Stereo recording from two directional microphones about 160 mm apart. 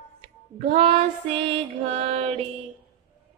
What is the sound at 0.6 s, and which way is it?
Music, 40° right (ahead or behind).